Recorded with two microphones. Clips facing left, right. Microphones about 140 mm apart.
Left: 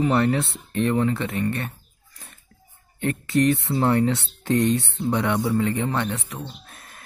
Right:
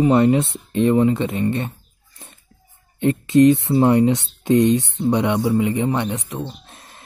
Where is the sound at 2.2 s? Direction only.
25° right (ahead or behind).